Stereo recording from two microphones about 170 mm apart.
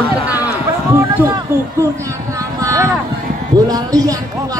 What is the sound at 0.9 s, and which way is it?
Speech, 15° right (ahead or behind).